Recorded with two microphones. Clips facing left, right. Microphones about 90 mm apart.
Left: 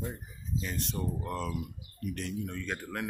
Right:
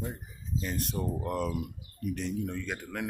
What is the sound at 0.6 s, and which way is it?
Speech, centre (ahead or behind).